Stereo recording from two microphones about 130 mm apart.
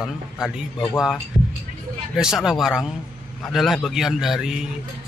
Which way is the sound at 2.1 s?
5° right (ahead or behind).